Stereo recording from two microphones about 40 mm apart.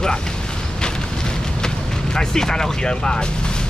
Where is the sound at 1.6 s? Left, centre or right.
Centre.